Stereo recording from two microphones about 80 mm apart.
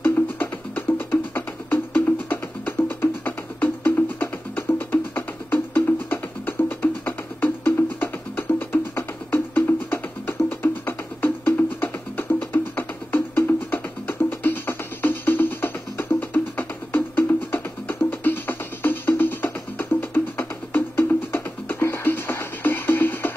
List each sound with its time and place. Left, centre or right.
0.0 s music: left